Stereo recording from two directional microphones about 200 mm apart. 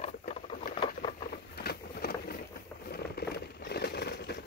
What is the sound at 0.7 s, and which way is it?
Patter, 25° left (ahead or behind).